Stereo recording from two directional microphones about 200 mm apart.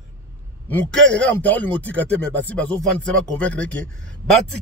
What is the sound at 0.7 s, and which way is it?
A man's voice, 5° left (ahead or behind).